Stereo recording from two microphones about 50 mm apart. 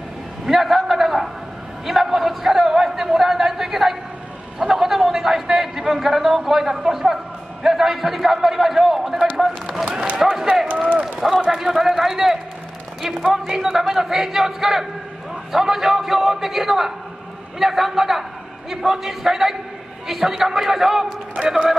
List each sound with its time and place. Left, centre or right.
0.5 s a sound: centre
1.9 s a man's voice: centre
10.7 s speech: right
11.1 s a man's voice: centre